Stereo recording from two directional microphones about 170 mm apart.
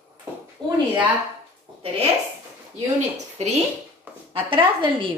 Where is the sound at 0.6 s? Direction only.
25° right (ahead or behind).